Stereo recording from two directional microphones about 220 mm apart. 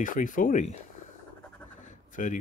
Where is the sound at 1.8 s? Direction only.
35° left (ahead or behind).